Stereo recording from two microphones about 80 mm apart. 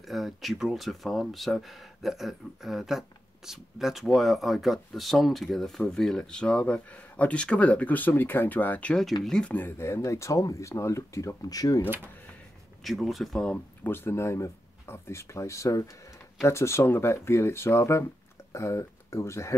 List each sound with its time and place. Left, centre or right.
0.0 s speech: centre
9.5 s speech: left
12.8 s speech: centre
13.8 s speech: left